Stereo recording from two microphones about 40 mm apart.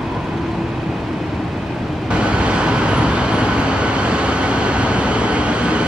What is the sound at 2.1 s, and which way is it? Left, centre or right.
Vehicle, right.